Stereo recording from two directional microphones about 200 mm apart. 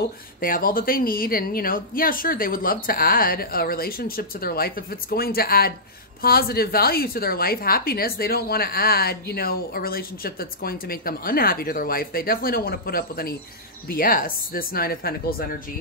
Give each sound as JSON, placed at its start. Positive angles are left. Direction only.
{"t": 0.4, "sound": "a woman's voice", "side_deg": 45}